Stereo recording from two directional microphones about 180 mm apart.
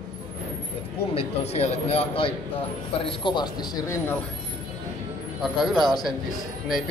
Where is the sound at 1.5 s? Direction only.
35° left (ahead or behind); by 4.0 s 20° left (ahead or behind).